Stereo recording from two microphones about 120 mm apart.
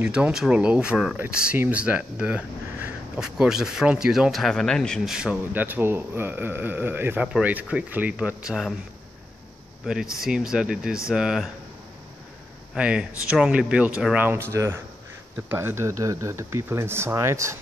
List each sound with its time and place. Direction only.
0.0 s speech: 10° right (ahead or behind)
5.1 s speech: 5° right (ahead or behind)
9.9 s speech: centre (ahead or behind)
12.7 s speech: 10° right (ahead or behind); by 17.6 s 25° right (ahead or behind)